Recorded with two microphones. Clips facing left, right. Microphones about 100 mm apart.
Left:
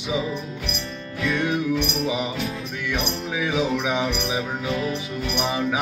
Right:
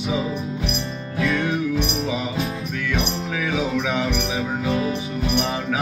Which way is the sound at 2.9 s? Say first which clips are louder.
Right 1 dB; 15° left (ahead or behind).